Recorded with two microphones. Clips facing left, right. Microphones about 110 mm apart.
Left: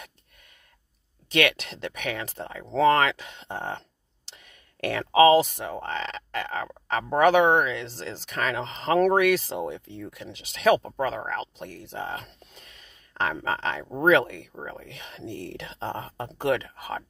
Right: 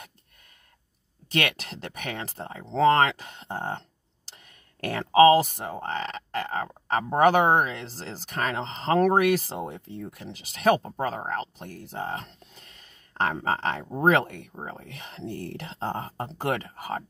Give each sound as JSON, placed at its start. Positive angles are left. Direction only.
{"t": 1.3, "sound": "speech", "side_deg": -40}